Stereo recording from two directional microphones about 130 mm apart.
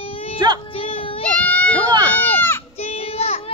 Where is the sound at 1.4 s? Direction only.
15° left (ahead or behind).